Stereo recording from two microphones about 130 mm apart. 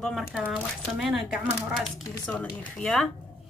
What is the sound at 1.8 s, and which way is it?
Speech, 10° left (ahead or behind).